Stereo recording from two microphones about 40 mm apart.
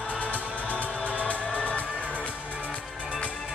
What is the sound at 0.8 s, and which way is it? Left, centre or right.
Music, left.